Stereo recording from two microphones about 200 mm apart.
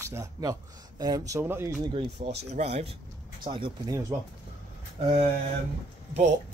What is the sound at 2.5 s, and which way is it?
Speech, 35° right (ahead or behind).